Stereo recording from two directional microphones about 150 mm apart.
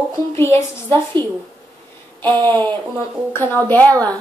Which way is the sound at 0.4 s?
15° left (ahead or behind).